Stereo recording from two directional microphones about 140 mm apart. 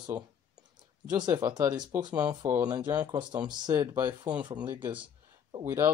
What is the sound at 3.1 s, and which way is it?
Speech, 30° right (ahead or behind).